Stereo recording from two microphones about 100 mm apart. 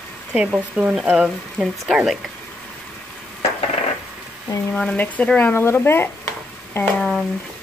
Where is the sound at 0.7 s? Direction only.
10° right (ahead or behind).